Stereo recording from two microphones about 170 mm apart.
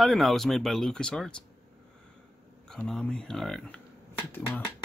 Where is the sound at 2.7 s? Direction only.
5° left (ahead or behind).